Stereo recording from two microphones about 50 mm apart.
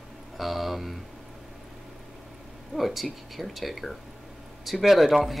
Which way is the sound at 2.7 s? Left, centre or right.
Centre.